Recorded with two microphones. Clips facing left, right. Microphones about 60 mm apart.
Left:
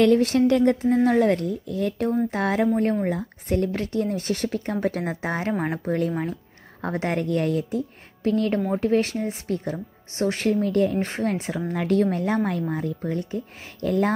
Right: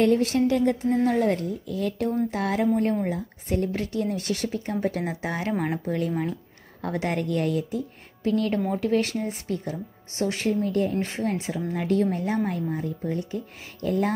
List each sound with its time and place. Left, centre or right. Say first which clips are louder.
0.0 s speech: left 3 dB; left
1.7 s speech: left 2 dB; left
5.5 s speech: even; centre
5.9 s speech: left 2 dB; left
10.6 s speech: left 3 dB; left